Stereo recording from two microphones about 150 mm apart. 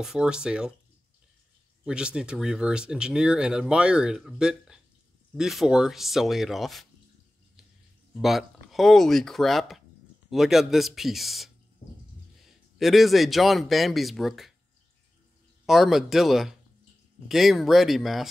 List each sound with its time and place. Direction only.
0.0 s speech: 5° right (ahead or behind)
1.9 s speech: 5° right (ahead or behind)
8.1 s speech: centre (ahead or behind)
11.8 s a sound: 55° left (ahead or behind)
12.7 s speech: centre (ahead or behind)
15.6 s speech: centre (ahead or behind)